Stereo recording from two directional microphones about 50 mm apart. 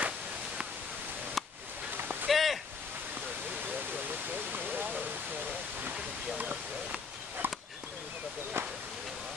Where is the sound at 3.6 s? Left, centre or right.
Right.